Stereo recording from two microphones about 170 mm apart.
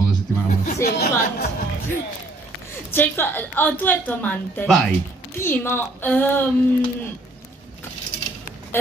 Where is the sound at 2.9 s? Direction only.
10° left (ahead or behind).